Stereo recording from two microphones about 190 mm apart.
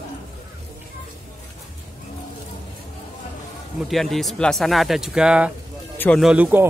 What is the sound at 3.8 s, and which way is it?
Speech, centre (ahead or behind).